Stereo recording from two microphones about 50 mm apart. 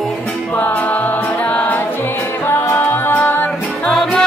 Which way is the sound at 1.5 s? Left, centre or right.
Left.